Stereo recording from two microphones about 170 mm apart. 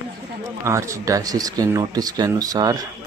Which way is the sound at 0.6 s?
15° right (ahead or behind).